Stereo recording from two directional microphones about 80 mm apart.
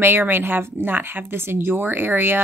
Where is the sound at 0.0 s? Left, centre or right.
Right.